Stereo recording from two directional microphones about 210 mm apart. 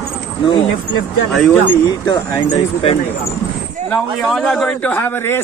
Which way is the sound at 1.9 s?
20° left (ahead or behind).